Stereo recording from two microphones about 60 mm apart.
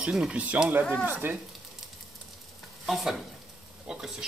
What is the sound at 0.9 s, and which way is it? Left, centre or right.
Speech, right.